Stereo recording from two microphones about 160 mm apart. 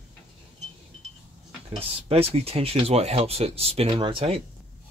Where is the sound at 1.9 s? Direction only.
40° right (ahead or behind).